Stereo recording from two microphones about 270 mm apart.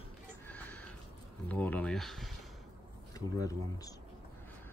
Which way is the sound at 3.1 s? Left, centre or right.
Centre.